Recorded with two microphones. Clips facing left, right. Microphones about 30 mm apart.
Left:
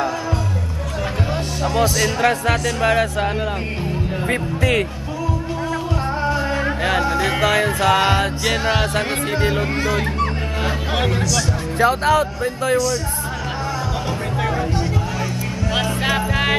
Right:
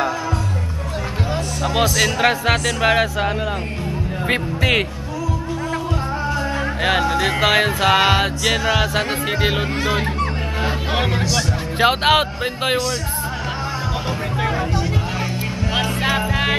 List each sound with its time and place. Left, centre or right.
1.7 s speech: right
2.0 s music: right
4.3 s speech: right
6.8 s music: right
9.8 s speech: centre
10.1 s music: centre
11.8 s speech: right
15.7 s music: centre